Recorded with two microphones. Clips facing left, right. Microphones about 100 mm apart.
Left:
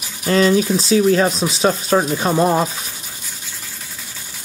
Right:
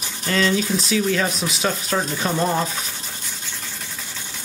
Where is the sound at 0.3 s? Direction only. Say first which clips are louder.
Left 6 dB; 35° left (ahead or behind).